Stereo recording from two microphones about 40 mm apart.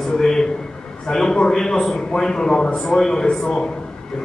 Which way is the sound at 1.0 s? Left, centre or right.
Centre.